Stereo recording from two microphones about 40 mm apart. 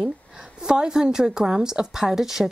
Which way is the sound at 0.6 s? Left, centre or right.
Right.